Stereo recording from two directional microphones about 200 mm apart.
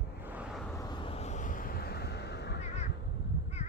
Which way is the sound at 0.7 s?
20° left (ahead or behind).